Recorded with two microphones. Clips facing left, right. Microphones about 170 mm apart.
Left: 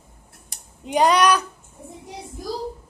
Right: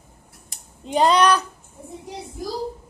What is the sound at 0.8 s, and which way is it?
Speech, 10° left (ahead or behind).